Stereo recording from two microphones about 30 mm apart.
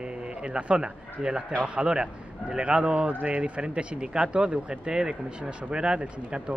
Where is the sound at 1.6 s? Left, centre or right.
Right.